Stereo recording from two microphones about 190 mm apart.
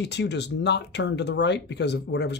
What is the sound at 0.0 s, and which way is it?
Speech, 65° left (ahead or behind).